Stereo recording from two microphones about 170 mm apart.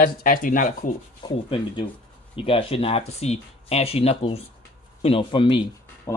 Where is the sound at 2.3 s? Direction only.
35° left (ahead or behind).